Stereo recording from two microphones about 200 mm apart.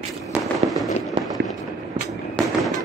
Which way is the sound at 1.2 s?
30° right (ahead or behind).